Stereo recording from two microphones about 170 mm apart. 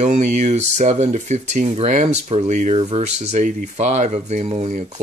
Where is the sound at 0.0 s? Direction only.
45° right (ahead or behind).